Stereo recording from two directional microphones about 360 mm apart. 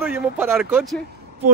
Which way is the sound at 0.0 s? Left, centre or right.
Centre.